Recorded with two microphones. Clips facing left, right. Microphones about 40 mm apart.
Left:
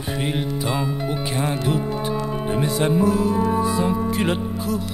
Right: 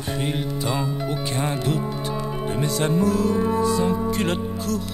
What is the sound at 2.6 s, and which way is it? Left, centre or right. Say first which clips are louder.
Music: left 2 dB; centre.